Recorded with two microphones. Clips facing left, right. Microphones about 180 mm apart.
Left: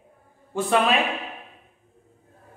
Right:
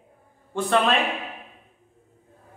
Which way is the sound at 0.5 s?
5° left (ahead or behind).